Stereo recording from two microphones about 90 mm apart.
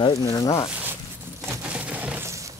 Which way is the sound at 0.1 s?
40° left (ahead or behind).